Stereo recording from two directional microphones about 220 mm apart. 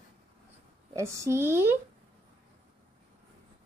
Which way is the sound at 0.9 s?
15° right (ahead or behind).